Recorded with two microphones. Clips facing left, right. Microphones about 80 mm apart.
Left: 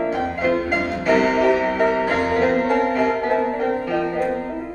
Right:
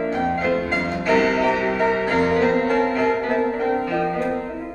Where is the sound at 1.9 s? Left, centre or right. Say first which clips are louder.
Even; centre.